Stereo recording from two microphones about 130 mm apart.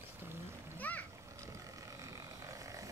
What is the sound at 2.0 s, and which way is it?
Vehicle, 25° right (ahead or behind).